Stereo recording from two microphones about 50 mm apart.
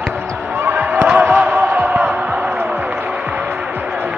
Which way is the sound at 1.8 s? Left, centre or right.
Right.